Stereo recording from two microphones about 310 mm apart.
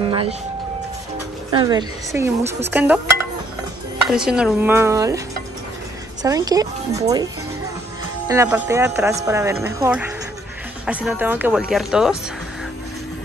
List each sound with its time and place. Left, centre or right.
0.0 s vehicle: centre
1.5 s speech: centre
4.1 s speech: centre
6.2 s speech: centre
8.3 s speech: centre